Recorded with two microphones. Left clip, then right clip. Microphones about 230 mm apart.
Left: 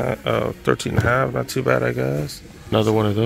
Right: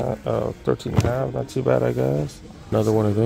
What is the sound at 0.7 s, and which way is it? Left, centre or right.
Speech, centre.